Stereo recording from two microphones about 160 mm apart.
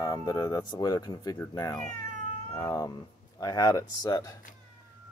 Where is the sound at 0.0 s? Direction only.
20° left (ahead or behind).